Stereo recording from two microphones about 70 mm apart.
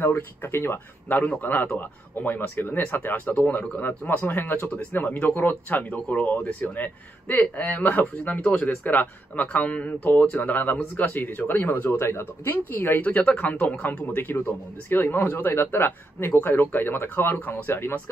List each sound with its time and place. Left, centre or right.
0.0 s speech: left
1.0 s a man's voice: left
8.6 s speech: left